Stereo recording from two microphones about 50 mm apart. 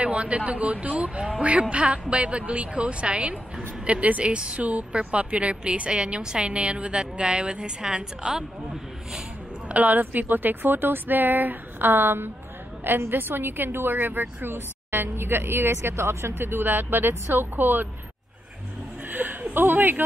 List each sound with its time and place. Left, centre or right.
0.0 s a woman's voice: right
9.7 s a woman's voice: right
19.0 s a sound: right
19.5 s speech: right